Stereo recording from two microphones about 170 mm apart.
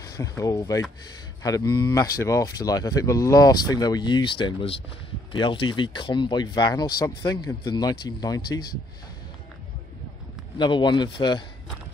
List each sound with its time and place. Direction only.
0.2 s speech: 20° left (ahead or behind)
10.6 s speech: 25° left (ahead or behind)